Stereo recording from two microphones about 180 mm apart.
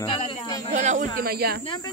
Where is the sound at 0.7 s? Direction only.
40° right (ahead or behind); by 1.6 s 60° right (ahead or behind).